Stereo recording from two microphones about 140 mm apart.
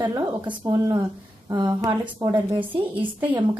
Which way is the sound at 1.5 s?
30° right (ahead or behind).